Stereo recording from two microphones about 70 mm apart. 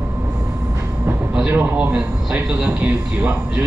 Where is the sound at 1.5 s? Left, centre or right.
Right.